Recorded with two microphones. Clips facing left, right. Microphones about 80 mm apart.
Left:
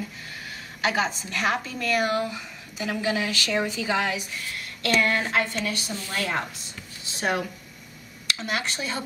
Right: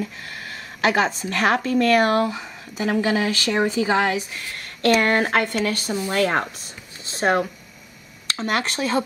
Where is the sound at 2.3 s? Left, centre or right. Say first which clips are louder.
Right 6 dB; right.